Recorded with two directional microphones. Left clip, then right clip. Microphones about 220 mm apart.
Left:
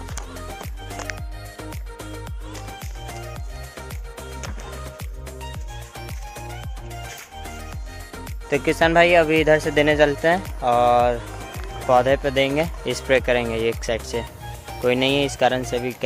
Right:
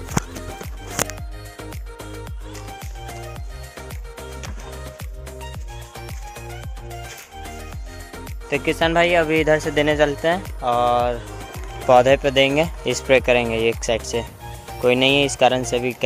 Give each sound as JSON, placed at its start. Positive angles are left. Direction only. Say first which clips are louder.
{"t": 0.3, "sound": "music", "louder": "right 1 dB", "side_deg": 0}
{"t": 8.1, "sound": "speech", "louder": "left 1 dB", "side_deg": 5}
{"t": 10.6, "sound": "a sound", "louder": "left 2 dB", "side_deg": 10}
{"t": 11.3, "sound": "music", "louder": "even", "side_deg": 0}
{"t": 11.9, "sound": "speech", "louder": "right 4 dB", "side_deg": -35}